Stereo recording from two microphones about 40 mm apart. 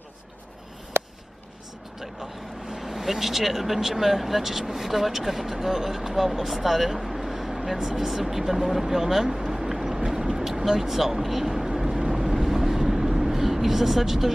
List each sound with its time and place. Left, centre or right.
2.8 s speech: centre